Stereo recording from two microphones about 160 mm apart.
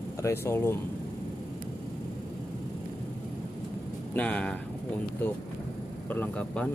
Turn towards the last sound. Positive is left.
turn(degrees=5)  # may be behind; listen again after turning